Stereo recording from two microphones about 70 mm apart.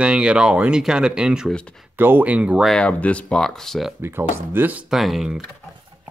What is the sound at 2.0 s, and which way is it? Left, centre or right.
Speech, right.